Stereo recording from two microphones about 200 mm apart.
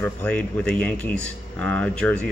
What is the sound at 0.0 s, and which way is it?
Speech, 5° left (ahead or behind).